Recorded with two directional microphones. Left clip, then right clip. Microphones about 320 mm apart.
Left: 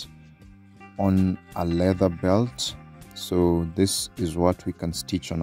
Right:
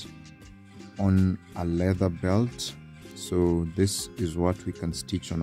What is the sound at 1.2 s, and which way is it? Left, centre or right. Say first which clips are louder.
Speech: left 4 dB; centre.